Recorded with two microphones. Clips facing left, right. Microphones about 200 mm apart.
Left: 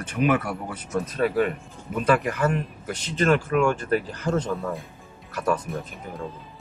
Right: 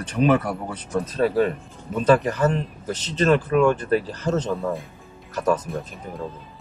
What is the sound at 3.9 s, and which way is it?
Speech, 30° right (ahead or behind).